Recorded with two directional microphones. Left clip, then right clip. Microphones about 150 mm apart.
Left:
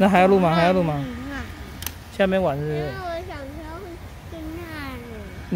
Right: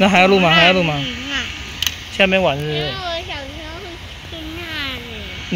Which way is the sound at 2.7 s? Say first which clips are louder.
Right 6 dB; 30° left (ahead or behind).